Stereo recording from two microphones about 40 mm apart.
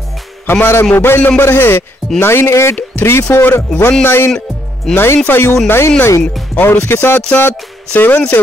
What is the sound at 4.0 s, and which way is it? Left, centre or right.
Speech, left.